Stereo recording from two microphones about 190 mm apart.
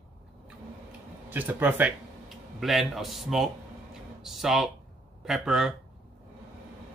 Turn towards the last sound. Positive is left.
turn(degrees=0)  # may be behind; listen again after turning